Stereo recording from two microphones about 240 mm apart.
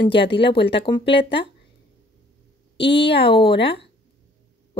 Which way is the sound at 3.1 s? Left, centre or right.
Left.